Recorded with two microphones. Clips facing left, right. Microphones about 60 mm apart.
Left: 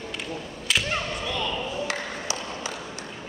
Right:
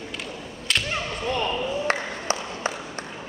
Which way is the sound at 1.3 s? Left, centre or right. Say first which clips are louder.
Right 8 dB; right.